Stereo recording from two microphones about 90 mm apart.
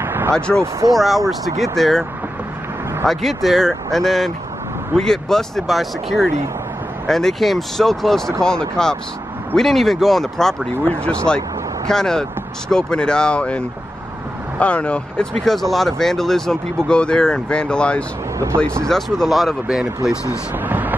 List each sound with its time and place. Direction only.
0.0 s a sound: 25° right (ahead or behind)
0.3 s speech: 10° left (ahead or behind)
3.1 s speech: centre (ahead or behind)
10.7 s speech: 15° left (ahead or behind); by 19.9 s centre (ahead or behind)
20.6 s vehicle: 20° right (ahead or behind)